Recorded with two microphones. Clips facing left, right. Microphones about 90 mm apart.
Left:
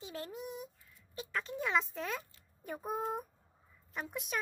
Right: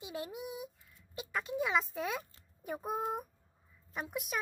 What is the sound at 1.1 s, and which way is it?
A child's voice, 10° right (ahead or behind).